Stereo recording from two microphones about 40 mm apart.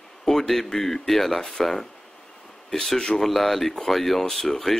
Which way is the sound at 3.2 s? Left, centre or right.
Centre.